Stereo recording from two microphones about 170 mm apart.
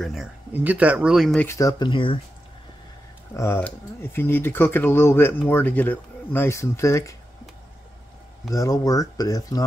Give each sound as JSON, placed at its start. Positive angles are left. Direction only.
{"t": 0.0, "sound": "speech", "side_deg": 0}
{"t": 3.3, "sound": "speech", "side_deg": 15}
{"t": 8.5, "sound": "speech", "side_deg": 20}